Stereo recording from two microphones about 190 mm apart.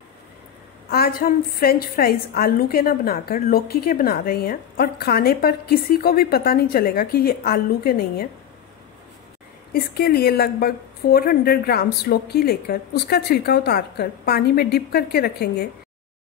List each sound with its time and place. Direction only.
0.8 s a woman's voice: 50° left (ahead or behind)
9.7 s a woman's voice: 50° left (ahead or behind)